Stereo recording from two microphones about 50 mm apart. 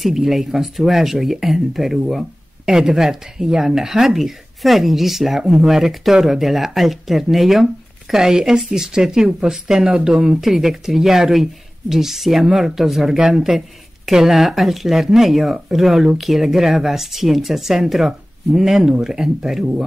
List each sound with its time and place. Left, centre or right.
0.0 s speech: centre
10.4 s speech: centre